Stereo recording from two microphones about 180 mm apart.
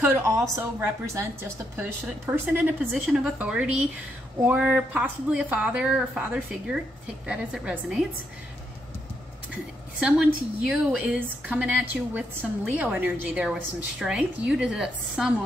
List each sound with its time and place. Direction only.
0.0 s a woman's voice: 15° right (ahead or behind)
9.9 s a woman's voice: centre (ahead or behind)